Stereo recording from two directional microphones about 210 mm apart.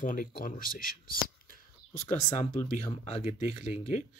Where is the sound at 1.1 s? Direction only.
40° left (ahead or behind).